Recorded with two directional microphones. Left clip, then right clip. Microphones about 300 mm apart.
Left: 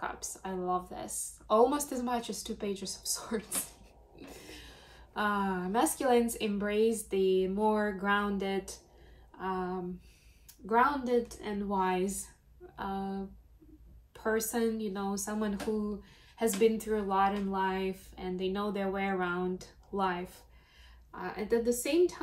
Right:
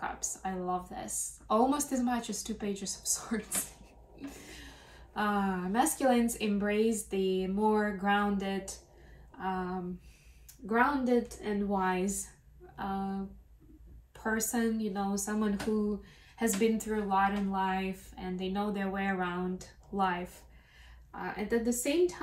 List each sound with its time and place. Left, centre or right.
0.0 s a woman's voice: centre